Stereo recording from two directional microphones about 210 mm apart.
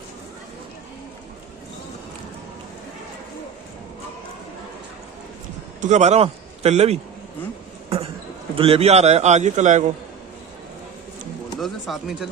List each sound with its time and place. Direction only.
5.8 s a man's voice: 35° right (ahead or behind)
8.5 s a man's voice: 25° right (ahead or behind)
11.6 s speech: centre (ahead or behind)